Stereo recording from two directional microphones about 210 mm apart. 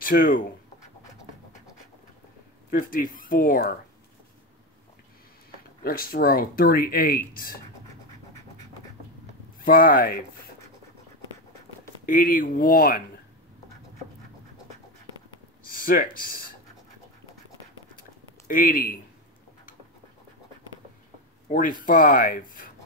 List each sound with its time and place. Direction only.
0.0 s speech: 45° left (ahead or behind)
2.7 s speech: 40° left (ahead or behind)
5.9 s speech: 45° left (ahead or behind)
9.7 s speech: 45° left (ahead or behind)
12.1 s speech: 40° left (ahead or behind)
15.8 s speech: 40° left (ahead or behind)
18.5 s speech: 40° left (ahead or behind)
21.5 s speech: 40° left (ahead or behind)